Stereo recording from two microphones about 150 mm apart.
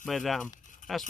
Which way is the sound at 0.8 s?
60° left (ahead or behind).